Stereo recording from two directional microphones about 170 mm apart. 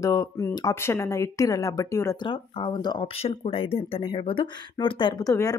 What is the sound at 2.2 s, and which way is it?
Speech, 30° left (ahead or behind).